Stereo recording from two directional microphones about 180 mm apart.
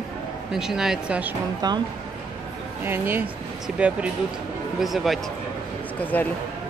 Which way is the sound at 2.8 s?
10° right (ahead or behind).